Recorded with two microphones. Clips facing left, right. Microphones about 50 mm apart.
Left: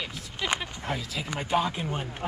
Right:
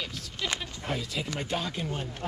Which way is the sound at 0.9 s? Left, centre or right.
Centre.